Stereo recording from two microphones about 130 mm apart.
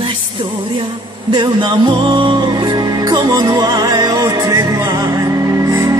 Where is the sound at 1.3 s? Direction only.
35° right (ahead or behind).